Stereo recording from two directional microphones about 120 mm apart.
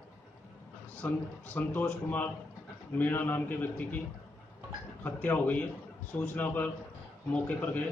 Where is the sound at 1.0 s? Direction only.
15° left (ahead or behind).